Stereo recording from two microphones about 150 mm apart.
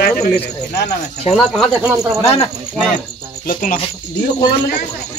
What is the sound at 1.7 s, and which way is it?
Speech, 10° right (ahead or behind).